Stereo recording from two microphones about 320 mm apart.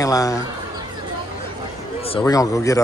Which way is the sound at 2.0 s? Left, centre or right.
Centre.